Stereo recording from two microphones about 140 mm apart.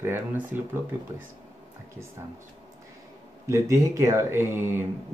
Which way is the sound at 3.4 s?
20° right (ahead or behind).